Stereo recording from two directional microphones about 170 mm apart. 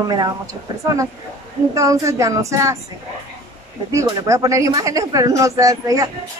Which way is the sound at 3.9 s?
20° right (ahead or behind).